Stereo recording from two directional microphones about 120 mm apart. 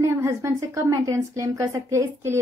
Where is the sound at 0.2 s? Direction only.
25° right (ahead or behind).